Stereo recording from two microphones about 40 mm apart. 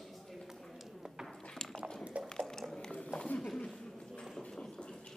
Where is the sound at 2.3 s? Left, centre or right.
Centre.